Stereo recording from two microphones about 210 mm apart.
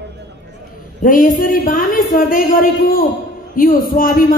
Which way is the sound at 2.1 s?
45° left (ahead or behind).